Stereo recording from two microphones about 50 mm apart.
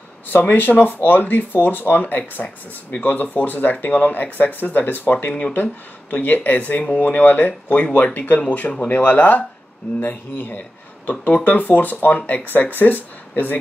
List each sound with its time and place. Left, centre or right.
0.3 s speech: left